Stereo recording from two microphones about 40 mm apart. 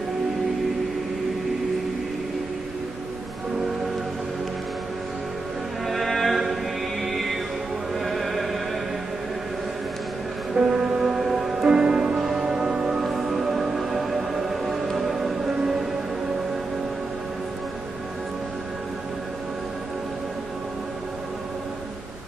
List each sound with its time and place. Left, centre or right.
5.9 s music: centre
10.5 s music: centre
11.7 s music: centre
13.1 s music: centre